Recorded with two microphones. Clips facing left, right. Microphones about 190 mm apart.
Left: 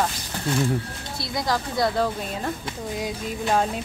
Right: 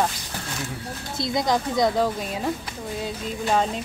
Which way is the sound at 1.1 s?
20° right (ahead or behind).